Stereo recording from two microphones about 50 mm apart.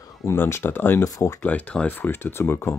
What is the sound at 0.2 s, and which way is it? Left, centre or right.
Speech, left.